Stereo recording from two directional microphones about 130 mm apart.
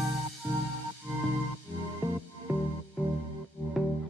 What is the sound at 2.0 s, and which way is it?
Music, 10° right (ahead or behind).